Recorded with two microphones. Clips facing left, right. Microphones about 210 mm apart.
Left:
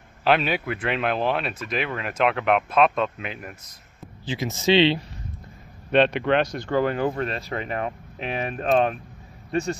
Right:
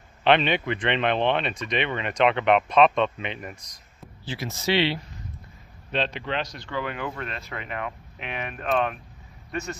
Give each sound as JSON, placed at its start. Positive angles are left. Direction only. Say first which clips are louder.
{"t": 0.2, "sound": "speech", "louder": "right 1 dB", "side_deg": 5}
{"t": 4.3, "sound": "speech", "louder": "left 5 dB", "side_deg": 20}
{"t": 5.9, "sound": "a man's voice", "louder": "left 9 dB", "side_deg": 60}